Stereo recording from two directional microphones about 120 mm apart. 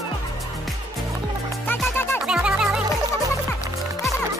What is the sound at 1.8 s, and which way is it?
Music, 20° left (ahead or behind).